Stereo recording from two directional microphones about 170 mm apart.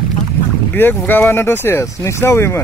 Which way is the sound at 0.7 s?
10° left (ahead or behind).